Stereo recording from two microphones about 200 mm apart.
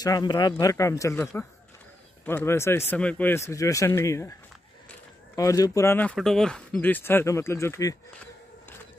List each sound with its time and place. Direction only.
0.0 s speech: 20° left (ahead or behind)